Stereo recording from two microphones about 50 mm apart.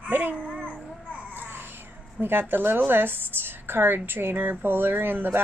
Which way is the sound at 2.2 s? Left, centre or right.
Right.